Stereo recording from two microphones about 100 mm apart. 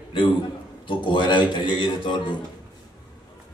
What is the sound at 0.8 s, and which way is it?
A man's voice, 55° left (ahead or behind).